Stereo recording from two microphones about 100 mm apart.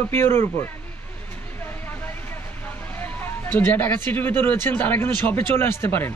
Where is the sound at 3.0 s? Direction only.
20° left (ahead or behind).